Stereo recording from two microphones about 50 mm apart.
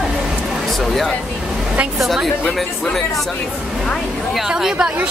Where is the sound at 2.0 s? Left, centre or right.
Centre.